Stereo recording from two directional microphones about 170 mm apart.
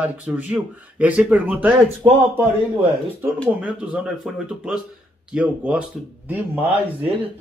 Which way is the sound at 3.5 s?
10° right (ahead or behind).